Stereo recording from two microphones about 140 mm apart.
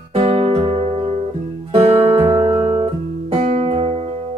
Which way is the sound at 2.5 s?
40° right (ahead or behind).